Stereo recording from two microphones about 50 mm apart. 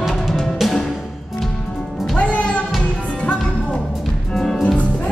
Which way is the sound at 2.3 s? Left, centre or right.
Left.